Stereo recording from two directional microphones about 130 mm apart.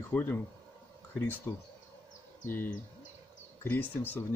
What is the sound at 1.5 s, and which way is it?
Speech, 25° left (ahead or behind).